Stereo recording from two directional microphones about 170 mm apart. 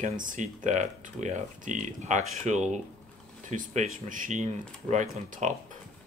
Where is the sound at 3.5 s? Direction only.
45° right (ahead or behind).